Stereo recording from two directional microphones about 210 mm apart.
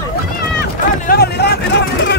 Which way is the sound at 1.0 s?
50° left (ahead or behind).